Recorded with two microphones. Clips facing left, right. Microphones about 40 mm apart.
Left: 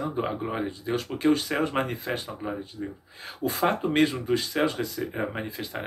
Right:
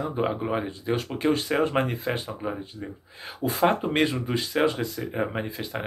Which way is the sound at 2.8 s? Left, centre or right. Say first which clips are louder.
Left 2 dB; centre.